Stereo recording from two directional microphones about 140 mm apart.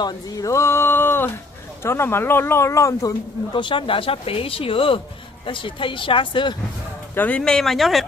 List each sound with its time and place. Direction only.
0.0 s a woman's voice: 25° left (ahead or behind)
7.2 s speech: 10° left (ahead or behind)